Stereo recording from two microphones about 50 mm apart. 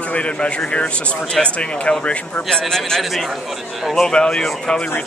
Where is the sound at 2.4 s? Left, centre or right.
Centre.